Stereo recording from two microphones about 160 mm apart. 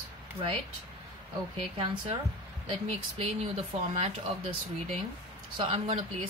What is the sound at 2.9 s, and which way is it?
Speech, 40° right (ahead or behind).